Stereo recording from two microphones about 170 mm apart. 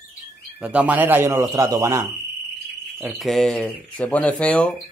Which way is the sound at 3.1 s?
Centre (ahead or behind).